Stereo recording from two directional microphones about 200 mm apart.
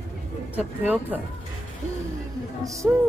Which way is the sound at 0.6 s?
10° right (ahead or behind).